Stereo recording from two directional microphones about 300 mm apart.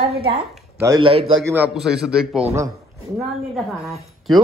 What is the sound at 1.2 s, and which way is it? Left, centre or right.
Speech, right.